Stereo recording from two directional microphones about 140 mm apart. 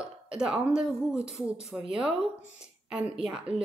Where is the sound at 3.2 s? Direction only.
5° right (ahead or behind).